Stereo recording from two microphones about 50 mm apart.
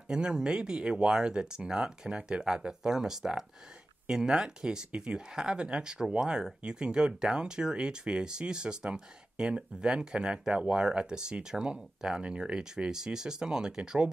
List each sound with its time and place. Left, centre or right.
0.1 s speech: centre